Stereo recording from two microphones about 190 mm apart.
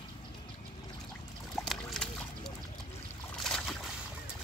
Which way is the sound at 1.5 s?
Centre (ahead or behind).